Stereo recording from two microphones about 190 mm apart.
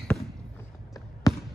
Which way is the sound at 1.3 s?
20° left (ahead or behind).